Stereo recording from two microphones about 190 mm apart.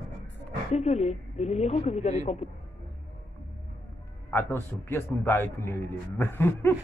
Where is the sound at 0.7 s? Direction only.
35° left (ahead or behind).